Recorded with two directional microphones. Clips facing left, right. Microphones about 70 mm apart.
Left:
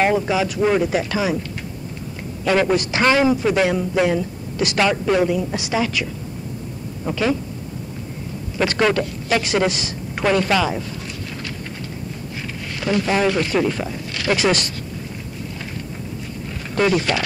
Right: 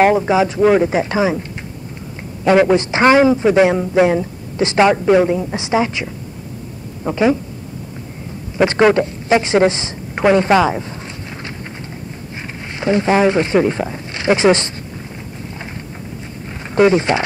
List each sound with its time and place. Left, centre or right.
0.0 s a man's voice: right
2.4 s a man's voice: right
7.1 s a man's voice: right
8.5 s speech: right
12.4 s speech: right
16.7 s a man's voice: right